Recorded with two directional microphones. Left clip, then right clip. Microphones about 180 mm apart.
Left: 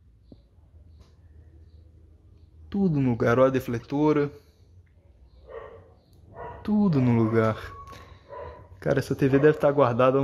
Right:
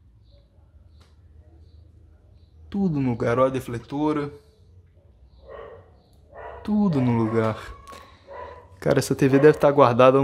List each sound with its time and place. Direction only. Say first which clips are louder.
2.7 s speech: even; 5° left (ahead or behind)
6.6 s speech: right 1 dB; 5° left (ahead or behind)